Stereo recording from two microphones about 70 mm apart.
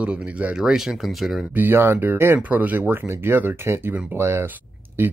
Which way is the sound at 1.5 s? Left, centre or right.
Right.